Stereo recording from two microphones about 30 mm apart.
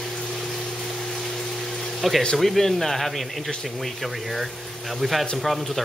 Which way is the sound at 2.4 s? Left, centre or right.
Centre.